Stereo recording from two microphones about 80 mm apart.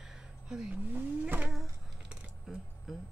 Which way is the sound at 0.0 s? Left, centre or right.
Centre.